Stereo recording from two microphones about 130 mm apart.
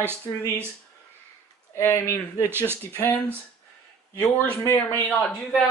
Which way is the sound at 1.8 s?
20° left (ahead or behind).